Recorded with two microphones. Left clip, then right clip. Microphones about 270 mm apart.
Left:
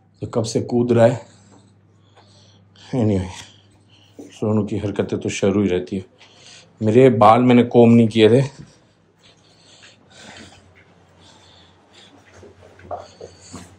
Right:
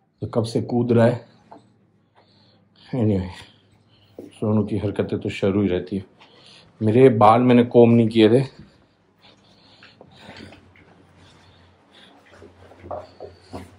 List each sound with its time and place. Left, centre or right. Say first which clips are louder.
0.2 s speech: left 2 dB; centre
2.8 s speech: left 2 dB; centre